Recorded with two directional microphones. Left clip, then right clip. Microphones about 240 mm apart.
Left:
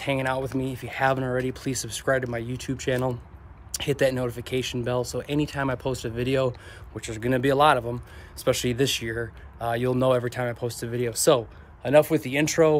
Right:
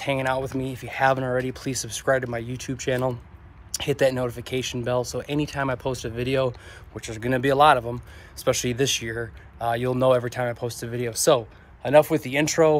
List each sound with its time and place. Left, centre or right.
0.0 s speech: centre